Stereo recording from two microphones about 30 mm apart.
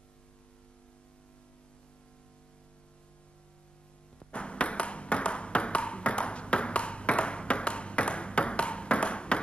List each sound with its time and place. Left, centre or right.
4.3 s ping: left